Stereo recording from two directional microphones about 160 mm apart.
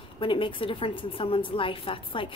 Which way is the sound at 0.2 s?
30° left (ahead or behind).